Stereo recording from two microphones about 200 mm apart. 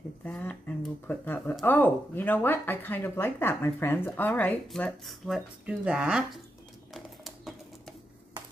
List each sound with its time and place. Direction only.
0.2 s speech: 5° left (ahead or behind)
6.9 s typewriter: centre (ahead or behind)